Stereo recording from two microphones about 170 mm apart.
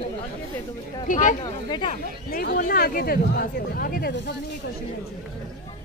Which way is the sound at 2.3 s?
60° left (ahead or behind).